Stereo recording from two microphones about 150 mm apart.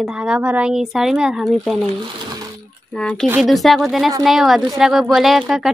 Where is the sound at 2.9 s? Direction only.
5° left (ahead or behind).